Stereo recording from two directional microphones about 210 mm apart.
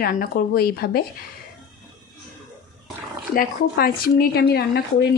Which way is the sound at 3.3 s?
45° left (ahead or behind).